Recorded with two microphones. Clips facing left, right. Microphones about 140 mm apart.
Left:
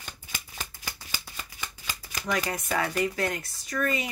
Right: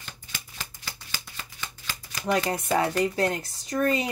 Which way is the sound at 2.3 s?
25° right (ahead or behind).